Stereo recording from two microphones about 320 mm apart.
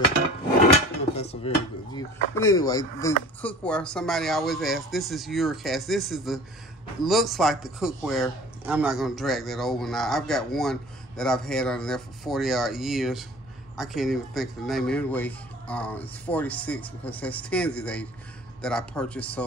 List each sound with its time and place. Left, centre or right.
1.5 s speech: centre